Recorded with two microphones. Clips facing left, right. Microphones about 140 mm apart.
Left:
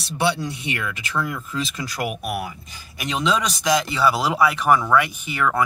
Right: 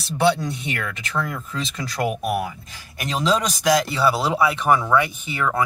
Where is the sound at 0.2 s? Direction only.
5° left (ahead or behind).